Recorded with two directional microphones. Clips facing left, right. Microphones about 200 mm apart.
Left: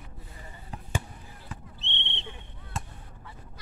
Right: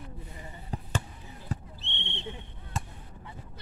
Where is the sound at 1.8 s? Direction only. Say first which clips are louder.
Even; 25° left (ahead or behind).